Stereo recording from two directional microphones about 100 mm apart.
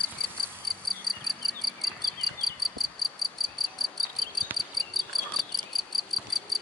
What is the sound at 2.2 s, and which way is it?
Cricket, 50° right (ahead or behind).